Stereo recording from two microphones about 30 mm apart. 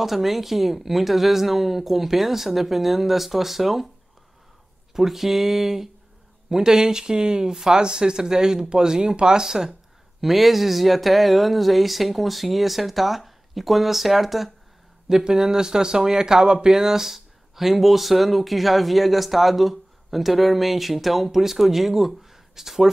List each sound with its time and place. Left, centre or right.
0.0 s speech: centre
4.9 s speech: centre
10.2 s speech: centre
15.0 s speech: centre